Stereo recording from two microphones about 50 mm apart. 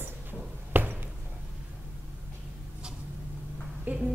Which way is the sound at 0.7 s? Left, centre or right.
Right.